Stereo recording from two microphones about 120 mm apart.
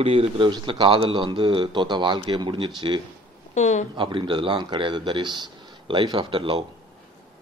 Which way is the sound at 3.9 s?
45° right (ahead or behind).